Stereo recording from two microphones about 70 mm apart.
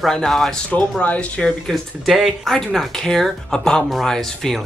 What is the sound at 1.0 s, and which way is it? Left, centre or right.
Speech, left.